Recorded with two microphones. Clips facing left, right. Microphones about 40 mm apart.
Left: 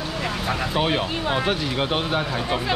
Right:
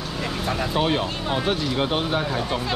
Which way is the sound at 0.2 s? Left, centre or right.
Centre.